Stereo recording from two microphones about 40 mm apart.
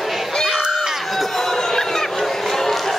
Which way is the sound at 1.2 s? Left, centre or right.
Centre.